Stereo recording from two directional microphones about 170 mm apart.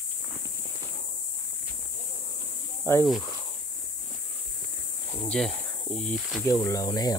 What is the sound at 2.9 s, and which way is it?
Speech, 15° left (ahead or behind).